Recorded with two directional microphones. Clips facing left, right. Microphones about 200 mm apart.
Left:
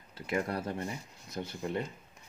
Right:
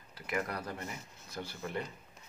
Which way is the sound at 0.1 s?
25° left (ahead or behind).